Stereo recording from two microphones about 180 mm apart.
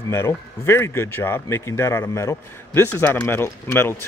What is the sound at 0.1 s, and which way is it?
Speech, 15° left (ahead or behind).